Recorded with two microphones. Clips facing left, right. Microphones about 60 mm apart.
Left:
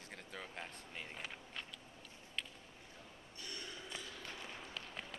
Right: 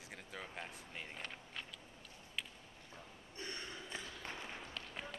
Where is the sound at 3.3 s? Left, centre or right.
Right.